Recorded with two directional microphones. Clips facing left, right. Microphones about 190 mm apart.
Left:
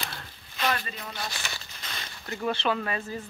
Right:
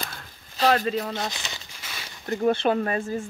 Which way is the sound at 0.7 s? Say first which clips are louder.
Right 9 dB; 75° right (ahead or behind).